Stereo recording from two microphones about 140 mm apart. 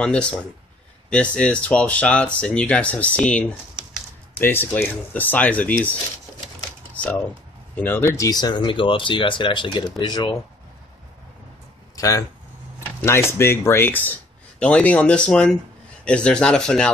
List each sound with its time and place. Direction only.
0.0 s speech: 10° left (ahead or behind); by 10.3 s 30° left (ahead or behind)
11.9 s a sound: 25° left (ahead or behind)
13.0 s speech: 20° left (ahead or behind)